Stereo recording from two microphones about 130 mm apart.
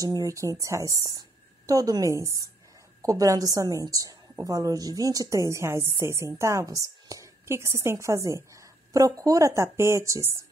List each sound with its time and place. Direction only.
0.0 s a woman's voice: 30° right (ahead or behind)